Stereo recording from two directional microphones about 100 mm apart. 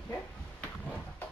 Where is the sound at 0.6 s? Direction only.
15° left (ahead or behind).